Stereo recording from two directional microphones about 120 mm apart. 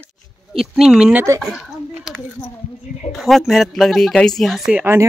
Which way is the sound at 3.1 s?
Centre (ahead or behind).